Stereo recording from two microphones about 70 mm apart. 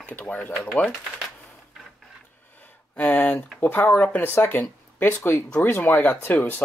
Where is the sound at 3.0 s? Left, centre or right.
Left.